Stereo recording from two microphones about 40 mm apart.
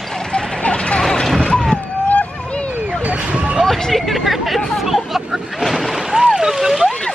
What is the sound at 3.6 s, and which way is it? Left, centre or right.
Hubbub, centre.